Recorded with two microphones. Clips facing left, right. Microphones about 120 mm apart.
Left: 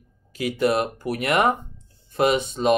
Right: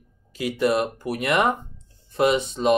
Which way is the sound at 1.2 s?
50° left (ahead or behind).